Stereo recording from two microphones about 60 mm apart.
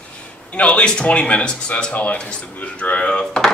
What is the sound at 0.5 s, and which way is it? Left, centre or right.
Speech, centre.